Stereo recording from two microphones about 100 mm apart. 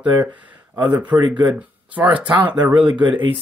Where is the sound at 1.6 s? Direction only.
15° right (ahead or behind).